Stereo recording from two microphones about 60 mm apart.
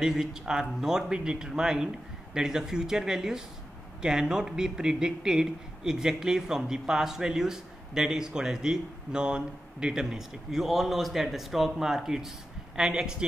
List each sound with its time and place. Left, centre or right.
0.0 s speech: centre